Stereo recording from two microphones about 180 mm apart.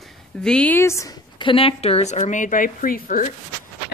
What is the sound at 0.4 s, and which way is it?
Speech, 5° left (ahead or behind).